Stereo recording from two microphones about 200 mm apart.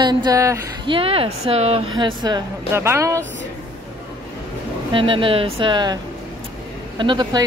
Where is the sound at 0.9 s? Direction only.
30° right (ahead or behind).